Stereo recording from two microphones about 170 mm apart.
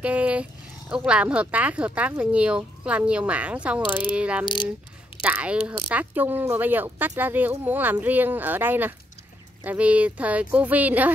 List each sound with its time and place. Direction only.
0.0 s speech: 10° right (ahead or behind)